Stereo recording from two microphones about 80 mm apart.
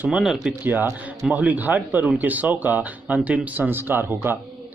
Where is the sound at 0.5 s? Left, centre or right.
Right.